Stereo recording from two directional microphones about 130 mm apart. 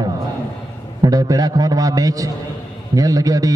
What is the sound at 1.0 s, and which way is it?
A man's voice, 25° right (ahead or behind).